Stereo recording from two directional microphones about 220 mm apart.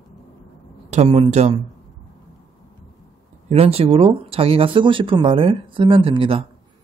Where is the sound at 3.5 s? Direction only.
25° right (ahead or behind).